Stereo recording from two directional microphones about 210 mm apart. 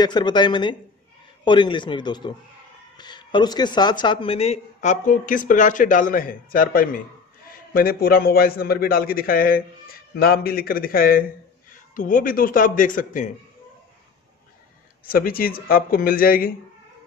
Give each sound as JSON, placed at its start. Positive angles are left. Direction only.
{"t": 0.0, "sound": "a man's voice", "side_deg": 20}
{"t": 15.0, "sound": "a man's voice", "side_deg": 45}